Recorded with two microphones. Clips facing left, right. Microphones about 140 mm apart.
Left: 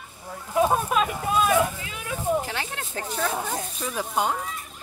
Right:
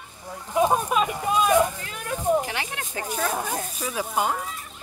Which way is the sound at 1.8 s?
45° right (ahead or behind).